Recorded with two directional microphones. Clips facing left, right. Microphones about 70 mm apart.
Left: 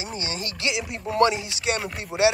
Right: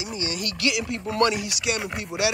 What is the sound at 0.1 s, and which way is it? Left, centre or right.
Speech, left.